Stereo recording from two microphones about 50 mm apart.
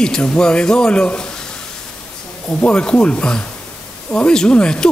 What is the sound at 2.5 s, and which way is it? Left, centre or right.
Speech, left.